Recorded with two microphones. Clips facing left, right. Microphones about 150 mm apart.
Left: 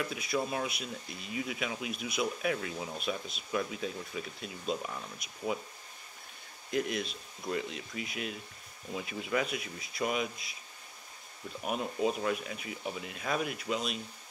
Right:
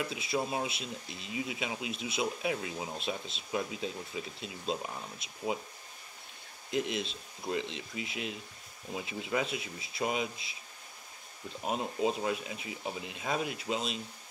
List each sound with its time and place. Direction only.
0.0 s speech: 25° right (ahead or behind)
6.7 s speech: 25° right (ahead or behind)
11.6 s speech: 25° right (ahead or behind)